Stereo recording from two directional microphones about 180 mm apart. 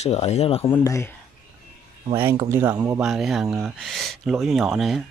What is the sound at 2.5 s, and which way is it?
Speech, 15° right (ahead or behind).